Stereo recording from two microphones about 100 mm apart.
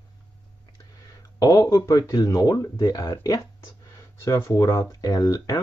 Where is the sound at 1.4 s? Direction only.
35° left (ahead or behind).